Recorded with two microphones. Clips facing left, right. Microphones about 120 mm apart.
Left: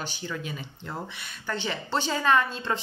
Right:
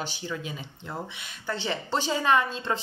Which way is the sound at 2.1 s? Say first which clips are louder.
Even; 20° right (ahead or behind).